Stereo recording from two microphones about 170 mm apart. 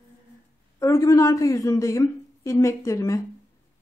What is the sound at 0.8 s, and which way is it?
A woman's voice, 20° left (ahead or behind).